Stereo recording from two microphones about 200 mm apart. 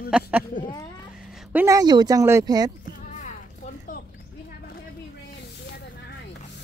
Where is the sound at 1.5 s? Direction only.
10° right (ahead or behind).